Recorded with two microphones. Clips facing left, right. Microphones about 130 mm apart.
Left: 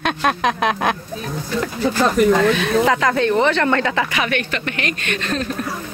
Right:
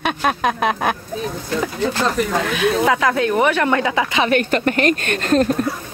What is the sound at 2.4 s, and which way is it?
Speech, 5° right (ahead or behind).